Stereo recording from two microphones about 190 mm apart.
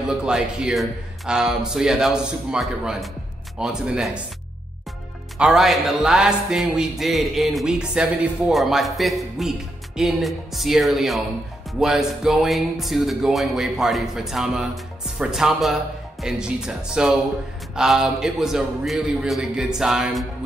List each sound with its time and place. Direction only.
0.2 s speech: 5° right (ahead or behind)
5.4 s speech: centre (ahead or behind)